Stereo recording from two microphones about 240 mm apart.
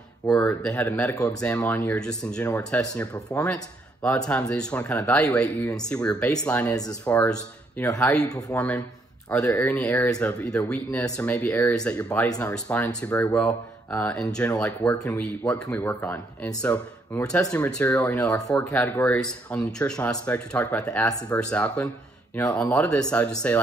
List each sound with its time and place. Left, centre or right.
0.3 s speech: centre
2.4 s speech: centre
2.8 s speech: centre